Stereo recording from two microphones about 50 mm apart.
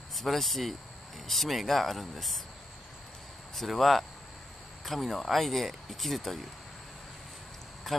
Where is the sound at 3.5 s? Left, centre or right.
Centre.